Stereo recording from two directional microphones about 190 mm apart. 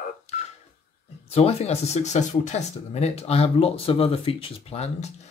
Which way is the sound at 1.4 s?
35° left (ahead or behind).